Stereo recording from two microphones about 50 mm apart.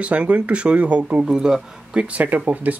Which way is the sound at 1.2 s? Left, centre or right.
Centre.